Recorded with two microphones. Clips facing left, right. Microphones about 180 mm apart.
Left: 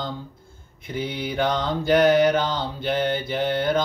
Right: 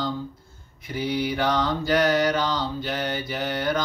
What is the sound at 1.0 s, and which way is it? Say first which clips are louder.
Mantra: right 1 dB; 25° left (ahead or behind).